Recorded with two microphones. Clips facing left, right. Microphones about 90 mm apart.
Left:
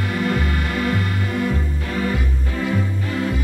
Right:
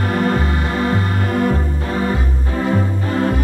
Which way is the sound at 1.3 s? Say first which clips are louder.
Right 6 dB; 45° right (ahead or behind).